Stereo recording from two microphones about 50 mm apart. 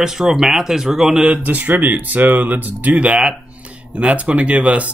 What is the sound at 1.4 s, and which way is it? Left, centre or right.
Speech, right.